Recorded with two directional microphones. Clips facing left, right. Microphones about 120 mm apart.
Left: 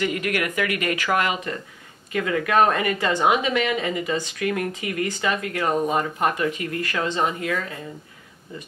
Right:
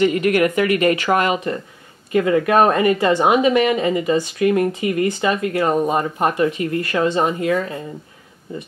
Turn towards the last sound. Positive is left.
turn(degrees=-25)  # may be behind; listen again after turning